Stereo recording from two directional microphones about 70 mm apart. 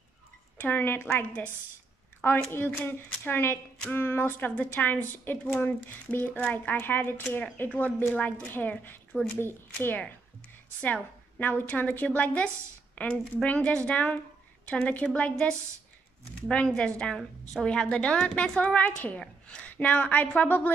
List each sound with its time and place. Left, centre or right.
0.6 s a woman's voice: left
2.5 s a woman's voice: left
16.4 s a woman's voice: centre